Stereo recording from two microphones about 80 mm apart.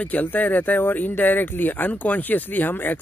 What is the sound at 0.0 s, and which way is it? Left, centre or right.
Speech, left.